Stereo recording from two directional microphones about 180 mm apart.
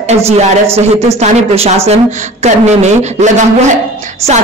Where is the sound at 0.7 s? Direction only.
35° right (ahead or behind).